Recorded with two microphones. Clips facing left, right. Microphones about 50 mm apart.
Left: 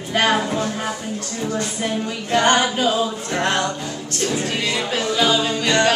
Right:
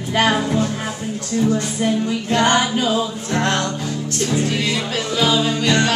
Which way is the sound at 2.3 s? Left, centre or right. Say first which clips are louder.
Even; centre.